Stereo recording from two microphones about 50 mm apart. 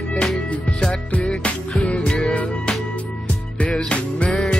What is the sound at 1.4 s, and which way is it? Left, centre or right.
Music, left.